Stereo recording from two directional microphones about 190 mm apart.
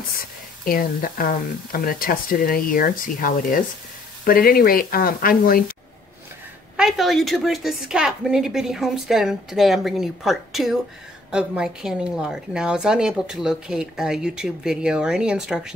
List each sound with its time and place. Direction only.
0.2 s speech: 50° left (ahead or behind)
6.8 s a woman's voice: centre (ahead or behind)